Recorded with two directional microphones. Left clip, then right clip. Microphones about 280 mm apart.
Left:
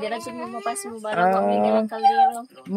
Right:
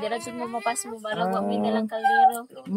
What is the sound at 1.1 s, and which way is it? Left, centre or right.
Speech, centre.